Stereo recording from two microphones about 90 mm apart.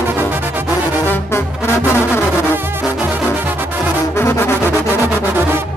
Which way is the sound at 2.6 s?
25° right (ahead or behind).